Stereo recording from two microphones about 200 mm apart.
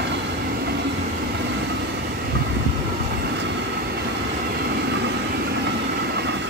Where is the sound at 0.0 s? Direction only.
55° right (ahead or behind).